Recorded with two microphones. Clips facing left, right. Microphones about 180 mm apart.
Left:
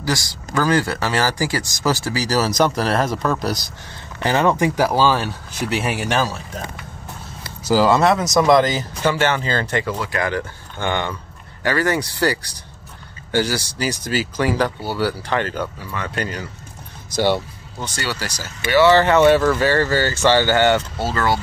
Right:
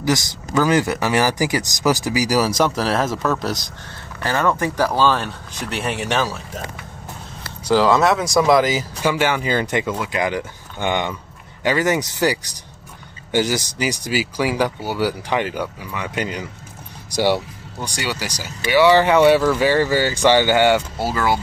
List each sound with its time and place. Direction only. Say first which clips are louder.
0.0 s speech: right 3 dB; 20° right (ahead or behind); by 3.5 s centre (ahead or behind)
4.2 s speech: left 3 dB; 20° left (ahead or behind); by 6.6 s centre (ahead or behind)
7.6 s speech: even; 5° left (ahead or behind)